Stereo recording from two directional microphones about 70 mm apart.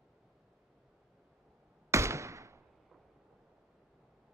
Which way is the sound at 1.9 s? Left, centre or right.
Right.